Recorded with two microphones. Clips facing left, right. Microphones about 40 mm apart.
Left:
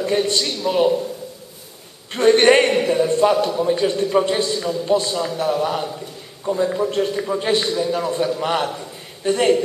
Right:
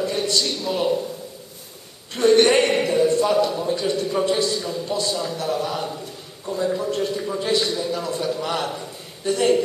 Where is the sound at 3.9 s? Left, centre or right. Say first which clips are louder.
Left 3 dB; left.